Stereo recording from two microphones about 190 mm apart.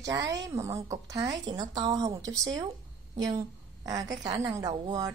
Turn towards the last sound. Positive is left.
turn(degrees=-20)  # may be behind; listen again after turning